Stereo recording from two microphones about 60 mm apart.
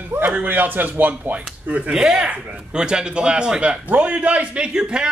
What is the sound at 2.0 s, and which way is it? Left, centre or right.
A man's voice, centre.